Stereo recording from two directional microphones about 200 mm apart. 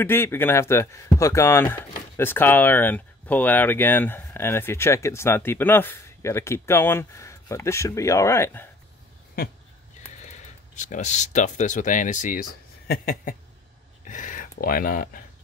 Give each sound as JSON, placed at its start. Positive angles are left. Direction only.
{"t": 0.0, "sound": "speech", "side_deg": 10}
{"t": 10.8, "sound": "speech", "side_deg": 35}